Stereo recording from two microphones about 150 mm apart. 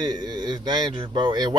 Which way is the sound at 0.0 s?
25° right (ahead or behind).